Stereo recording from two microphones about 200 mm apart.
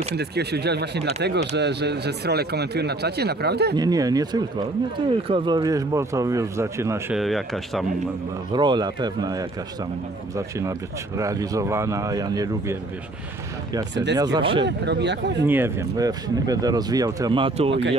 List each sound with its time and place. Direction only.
0.1 s speech: 55° right (ahead or behind)
3.7 s speech: 20° right (ahead or behind)
7.2 s speech: centre (ahead or behind)
8.5 s speech: 20° right (ahead or behind)
11.1 s speech: 15° right (ahead or behind)
14.1 s speech: 20° right (ahead or behind)
14.6 s speech: 60° right (ahead or behind)
15.4 s speech: 10° right (ahead or behind); by 17.7 s 25° right (ahead or behind)